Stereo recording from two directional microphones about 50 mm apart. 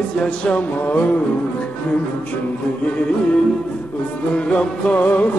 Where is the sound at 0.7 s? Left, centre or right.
Left.